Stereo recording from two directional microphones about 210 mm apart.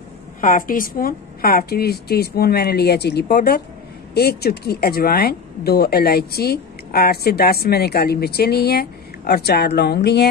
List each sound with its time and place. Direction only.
0.4 s speech: 40° left (ahead or behind)